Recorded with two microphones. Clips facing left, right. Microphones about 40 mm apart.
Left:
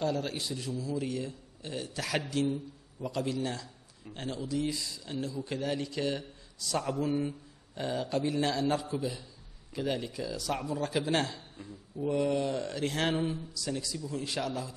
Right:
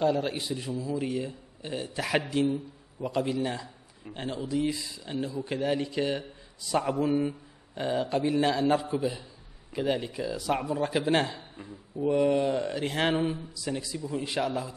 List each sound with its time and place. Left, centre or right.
0.0 s a man's voice: centre